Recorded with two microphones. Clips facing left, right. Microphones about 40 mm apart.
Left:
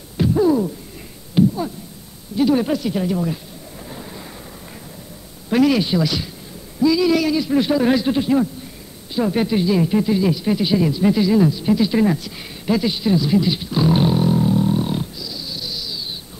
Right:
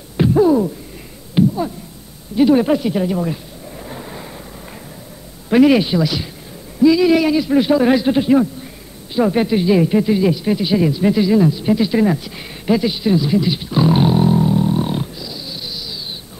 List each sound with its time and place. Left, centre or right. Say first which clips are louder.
0.2 s a sound: right 3 dB; centre
2.3 s a man's voice: right 4 dB; centre
3.8 s vehicle: right 3 dB; centre
5.5 s a man's voice: right 4 dB; centre
5.9 s a man's voice: right 2 dB; centre
6.8 s a man's voice: right 4 dB; centre
14.8 s a sound: right 2 dB; centre